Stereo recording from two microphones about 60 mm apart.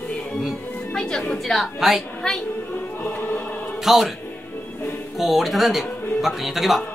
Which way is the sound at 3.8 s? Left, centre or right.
Centre.